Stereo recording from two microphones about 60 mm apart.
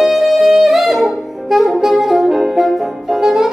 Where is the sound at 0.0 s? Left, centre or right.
Centre.